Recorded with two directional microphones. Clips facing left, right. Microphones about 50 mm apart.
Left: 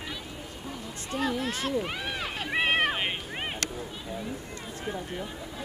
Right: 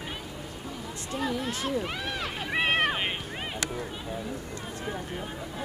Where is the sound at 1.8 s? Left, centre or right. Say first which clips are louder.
Even; centre.